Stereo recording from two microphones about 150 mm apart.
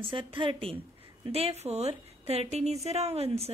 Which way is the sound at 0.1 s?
35° right (ahead or behind).